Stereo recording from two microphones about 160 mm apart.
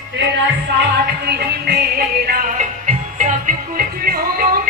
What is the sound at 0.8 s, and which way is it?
Music, 90° right.